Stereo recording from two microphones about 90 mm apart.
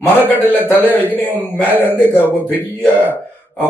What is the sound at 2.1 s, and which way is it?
Speech, 20° left (ahead or behind).